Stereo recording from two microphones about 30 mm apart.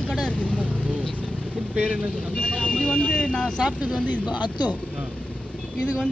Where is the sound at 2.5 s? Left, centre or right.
Left.